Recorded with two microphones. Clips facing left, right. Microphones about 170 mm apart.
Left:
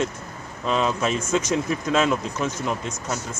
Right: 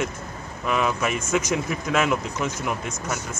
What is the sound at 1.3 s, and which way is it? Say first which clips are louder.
Speech: left 1 dB; 15° right (ahead or behind).